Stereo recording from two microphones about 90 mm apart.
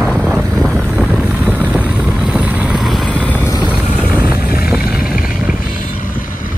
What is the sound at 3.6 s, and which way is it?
Vehicle, 15° right (ahead or behind).